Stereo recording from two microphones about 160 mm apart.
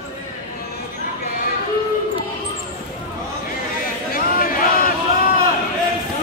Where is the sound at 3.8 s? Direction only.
65° left (ahead or behind).